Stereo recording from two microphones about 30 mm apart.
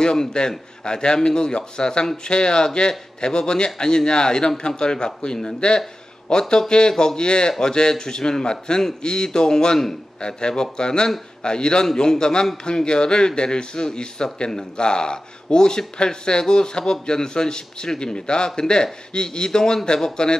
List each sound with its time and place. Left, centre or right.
0.0 s a man's voice: left
7.2 s a man's voice: left
14.8 s a man's voice: left